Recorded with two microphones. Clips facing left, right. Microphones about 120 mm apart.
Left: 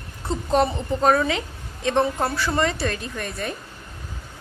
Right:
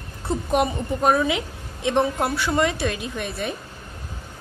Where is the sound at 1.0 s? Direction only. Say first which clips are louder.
Even; 10° right (ahead or behind).